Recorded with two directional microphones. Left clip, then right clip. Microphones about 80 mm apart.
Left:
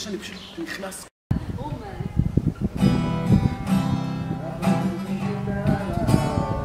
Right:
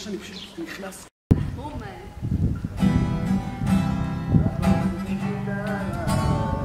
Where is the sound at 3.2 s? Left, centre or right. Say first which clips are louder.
Left 4 dB; centre.